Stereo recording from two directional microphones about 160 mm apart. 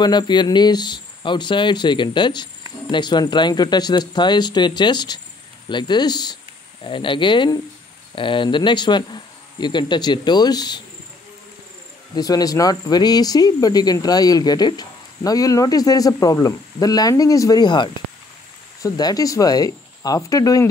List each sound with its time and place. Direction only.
0.0 s speech: 25° left (ahead or behind)
12.2 s speech: 25° left (ahead or behind)